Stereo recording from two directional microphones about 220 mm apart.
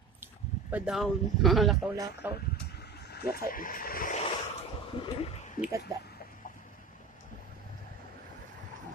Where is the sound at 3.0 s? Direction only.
45° left (ahead or behind).